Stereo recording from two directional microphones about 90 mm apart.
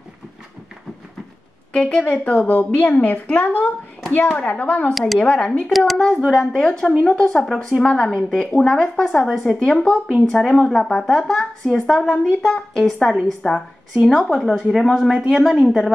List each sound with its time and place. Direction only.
1.7 s a woman's voice: 10° left (ahead or behind)
4.9 s a woman's voice: centre (ahead or behind)
5.2 s speech: 15° left (ahead or behind)
5.7 s a woman's voice: centre (ahead or behind)